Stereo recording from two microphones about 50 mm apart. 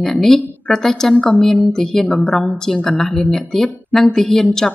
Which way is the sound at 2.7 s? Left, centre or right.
Centre.